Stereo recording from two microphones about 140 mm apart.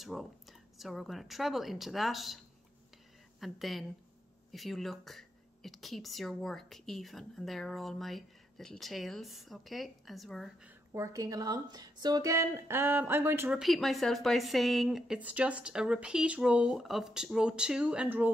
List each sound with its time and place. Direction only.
0.0 s a woman's voice: centre (ahead or behind)
10.9 s speech: 20° right (ahead or behind)
13.5 s a woman's voice: centre (ahead or behind)